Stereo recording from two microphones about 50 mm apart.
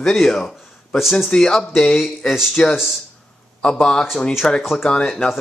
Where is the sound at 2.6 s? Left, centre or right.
Centre.